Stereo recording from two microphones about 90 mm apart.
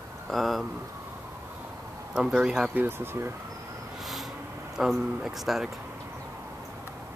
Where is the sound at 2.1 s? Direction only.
10° right (ahead or behind).